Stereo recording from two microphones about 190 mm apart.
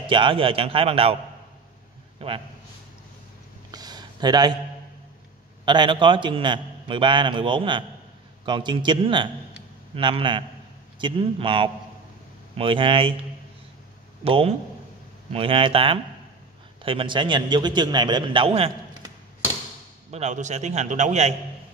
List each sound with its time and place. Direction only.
0.0 s a man's voice: 25° right (ahead or behind)
2.1 s a man's voice: 30° right (ahead or behind)
3.7 s a sound: 20° right (ahead or behind)
5.7 s a man's voice: 25° right (ahead or behind)
14.2 s a man's voice: 30° right (ahead or behind)
20.1 s a man's voice: 35° right (ahead or behind)